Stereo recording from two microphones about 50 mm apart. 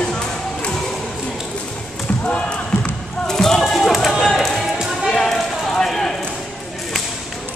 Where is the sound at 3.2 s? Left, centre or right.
Centre.